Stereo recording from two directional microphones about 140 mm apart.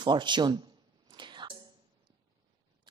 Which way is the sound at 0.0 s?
30° right (ahead or behind).